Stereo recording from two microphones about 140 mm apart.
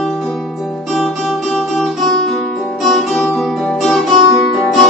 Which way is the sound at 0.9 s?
Centre (ahead or behind).